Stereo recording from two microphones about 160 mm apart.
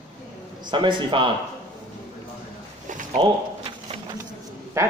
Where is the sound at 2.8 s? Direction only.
50° right (ahead or behind).